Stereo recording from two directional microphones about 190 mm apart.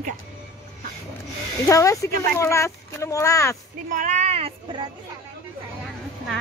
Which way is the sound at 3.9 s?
40° right (ahead or behind).